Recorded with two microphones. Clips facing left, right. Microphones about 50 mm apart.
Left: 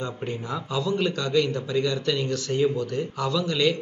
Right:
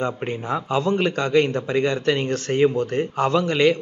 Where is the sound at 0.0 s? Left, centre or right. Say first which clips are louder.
Right 5 dB; right.